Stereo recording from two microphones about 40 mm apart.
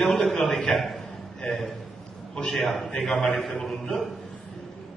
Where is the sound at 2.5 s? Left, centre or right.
Centre.